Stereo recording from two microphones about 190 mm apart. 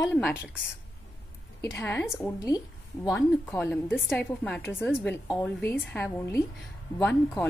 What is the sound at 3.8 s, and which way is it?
A woman's voice, 5° right (ahead or behind).